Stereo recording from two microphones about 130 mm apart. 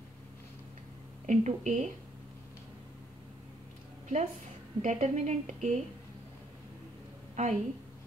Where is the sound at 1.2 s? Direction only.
65° right (ahead or behind).